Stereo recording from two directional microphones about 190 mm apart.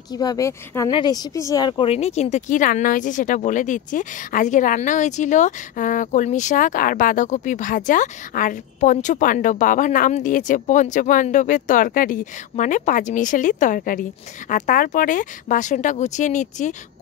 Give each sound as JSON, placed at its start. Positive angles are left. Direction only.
{"t": 0.1, "sound": "a woman's voice", "side_deg": 20}